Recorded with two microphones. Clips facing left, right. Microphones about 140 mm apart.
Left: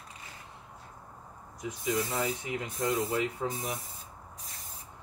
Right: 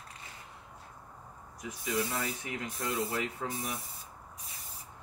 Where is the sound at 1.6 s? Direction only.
20° left (ahead or behind).